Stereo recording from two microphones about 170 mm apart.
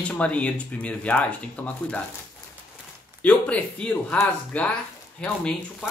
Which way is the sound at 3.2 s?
5° left (ahead or behind).